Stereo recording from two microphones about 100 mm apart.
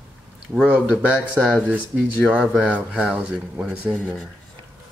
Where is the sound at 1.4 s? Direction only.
Centre (ahead or behind).